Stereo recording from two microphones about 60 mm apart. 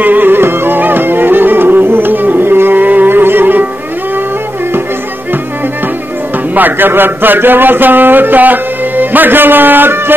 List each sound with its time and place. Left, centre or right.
0.0 s music: right
6.5 s a man's voice: right